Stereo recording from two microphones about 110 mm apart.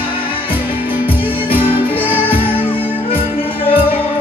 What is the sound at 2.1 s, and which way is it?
Music, 55° left (ahead or behind).